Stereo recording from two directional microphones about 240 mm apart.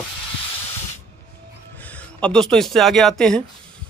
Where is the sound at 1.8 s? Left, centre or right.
Centre.